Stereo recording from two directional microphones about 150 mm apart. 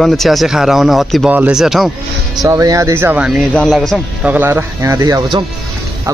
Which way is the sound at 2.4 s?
20° right (ahead or behind).